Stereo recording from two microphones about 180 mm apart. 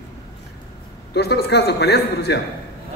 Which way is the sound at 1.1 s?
65° left (ahead or behind).